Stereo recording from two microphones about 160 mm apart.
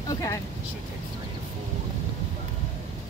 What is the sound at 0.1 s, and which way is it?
Speech, 20° left (ahead or behind).